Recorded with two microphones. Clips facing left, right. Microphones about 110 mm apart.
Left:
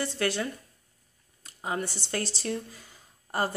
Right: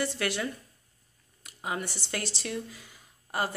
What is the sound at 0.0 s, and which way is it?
Speech, 30° left (ahead or behind).